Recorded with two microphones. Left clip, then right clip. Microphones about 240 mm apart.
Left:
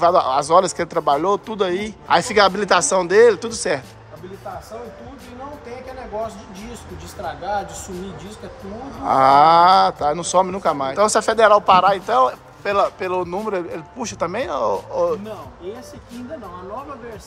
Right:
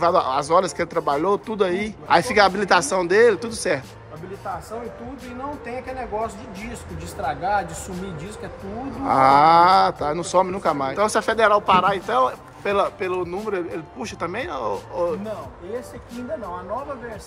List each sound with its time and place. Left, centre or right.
0.0 s speech: centre
3.3 s speech: left
9.0 s speech: centre